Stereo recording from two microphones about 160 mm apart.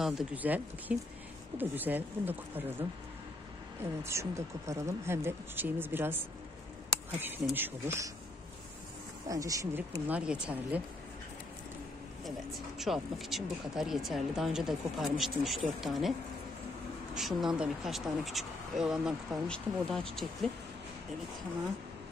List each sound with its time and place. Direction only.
0.0 s speech: 5° right (ahead or behind)
3.8 s speech: 15° right (ahead or behind)
6.9 s a sound: 15° right (ahead or behind)
7.5 s speech: 15° right (ahead or behind)
9.3 s speech: 20° right (ahead or behind)
12.3 s speech: centre (ahead or behind)